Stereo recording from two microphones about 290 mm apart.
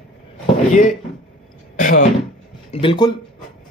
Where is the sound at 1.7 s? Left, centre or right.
Left.